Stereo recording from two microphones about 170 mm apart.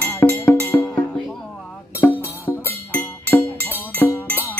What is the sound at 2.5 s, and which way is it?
Music, 15° left (ahead or behind).